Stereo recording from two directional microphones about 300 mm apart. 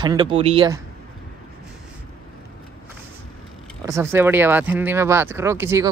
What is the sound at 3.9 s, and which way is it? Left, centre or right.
Speech, centre.